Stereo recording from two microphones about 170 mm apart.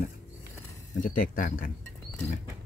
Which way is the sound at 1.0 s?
55° left (ahead or behind).